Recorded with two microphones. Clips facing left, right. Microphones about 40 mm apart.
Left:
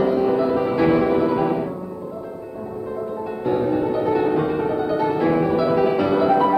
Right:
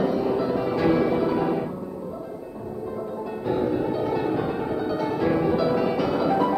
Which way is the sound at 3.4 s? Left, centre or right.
Centre.